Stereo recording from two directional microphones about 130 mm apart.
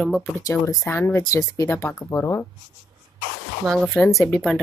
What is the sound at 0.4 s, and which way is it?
Speech, 25° left (ahead or behind).